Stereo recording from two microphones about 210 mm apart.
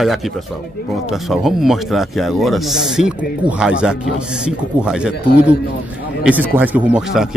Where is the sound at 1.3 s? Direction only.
Centre (ahead or behind).